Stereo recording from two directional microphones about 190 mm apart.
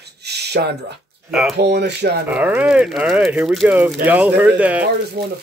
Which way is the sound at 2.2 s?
10° right (ahead or behind).